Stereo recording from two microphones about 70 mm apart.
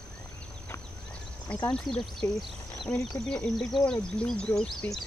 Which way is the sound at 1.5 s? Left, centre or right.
Centre.